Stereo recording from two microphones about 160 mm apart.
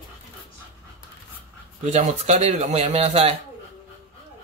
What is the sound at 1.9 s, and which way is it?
Speech, 45° right (ahead or behind).